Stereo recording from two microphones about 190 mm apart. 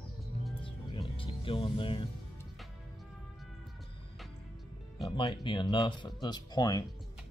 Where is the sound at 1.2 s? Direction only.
30° left (ahead or behind).